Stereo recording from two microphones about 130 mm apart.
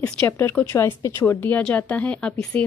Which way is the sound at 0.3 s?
15° left (ahead or behind).